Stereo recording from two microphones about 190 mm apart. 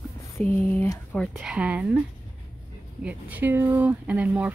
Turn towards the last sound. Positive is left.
turn(degrees=-10)  # may be behind; listen again after turning